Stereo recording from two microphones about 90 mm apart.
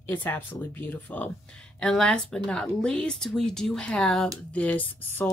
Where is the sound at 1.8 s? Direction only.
5° left (ahead or behind).